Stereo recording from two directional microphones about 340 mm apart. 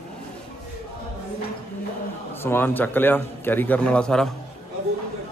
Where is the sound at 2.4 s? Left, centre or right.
Centre.